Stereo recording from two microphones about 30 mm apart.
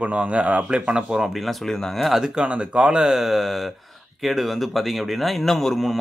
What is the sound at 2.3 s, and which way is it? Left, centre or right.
Speech, right.